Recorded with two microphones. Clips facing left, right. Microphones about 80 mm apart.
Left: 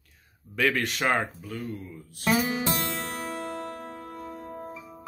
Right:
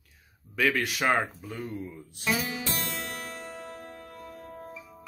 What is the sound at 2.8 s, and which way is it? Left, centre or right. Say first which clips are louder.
Music: left 4 dB; left.